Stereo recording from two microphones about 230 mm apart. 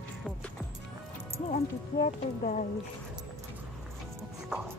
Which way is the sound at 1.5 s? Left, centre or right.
Left.